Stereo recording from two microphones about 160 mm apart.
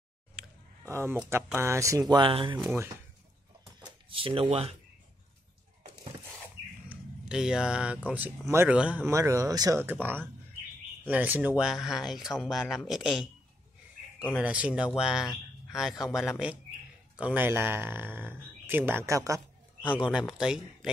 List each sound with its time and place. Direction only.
0.4 s a sound: centre (ahead or behind)
0.8 s speech: 15° right (ahead or behind); by 2.6 s 30° right (ahead or behind)
3.8 s speech: 35° right (ahead or behind)
6.9 s speech: 5° right (ahead or behind)
9.1 s speech: 20° right (ahead or behind)
19.8 s speech: 5° right (ahead or behind)